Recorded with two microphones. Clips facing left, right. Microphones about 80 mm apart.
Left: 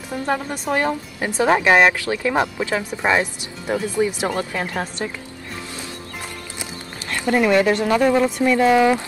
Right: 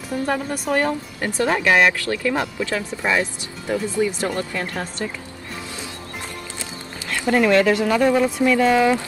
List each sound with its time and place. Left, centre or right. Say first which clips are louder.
0.1 s speech: even; centre; by 4.8 s left
6.6 s music: even; centre
7.3 s speech: even; centre